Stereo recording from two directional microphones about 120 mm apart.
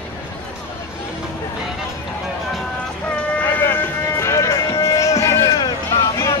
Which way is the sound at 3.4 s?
20° left (ahead or behind).